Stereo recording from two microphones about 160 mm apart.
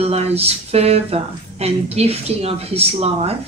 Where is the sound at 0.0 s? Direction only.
40° right (ahead or behind).